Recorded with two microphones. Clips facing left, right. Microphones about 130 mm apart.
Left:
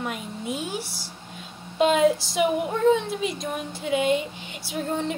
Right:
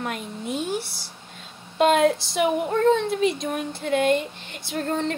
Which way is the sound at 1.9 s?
5° left (ahead or behind).